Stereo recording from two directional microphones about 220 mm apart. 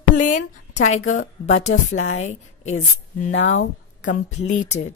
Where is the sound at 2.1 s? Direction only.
35° left (ahead or behind).